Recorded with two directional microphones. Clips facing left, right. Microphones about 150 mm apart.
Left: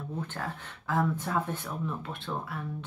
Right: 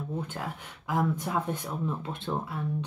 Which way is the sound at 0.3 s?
15° right (ahead or behind).